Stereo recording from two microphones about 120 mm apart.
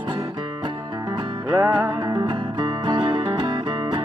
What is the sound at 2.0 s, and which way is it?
Music, 40° right (ahead or behind).